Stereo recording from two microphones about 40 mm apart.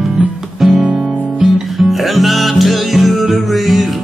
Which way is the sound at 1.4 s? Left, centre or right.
Centre.